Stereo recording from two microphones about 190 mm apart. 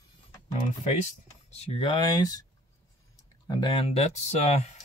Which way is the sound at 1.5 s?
35° left (ahead or behind).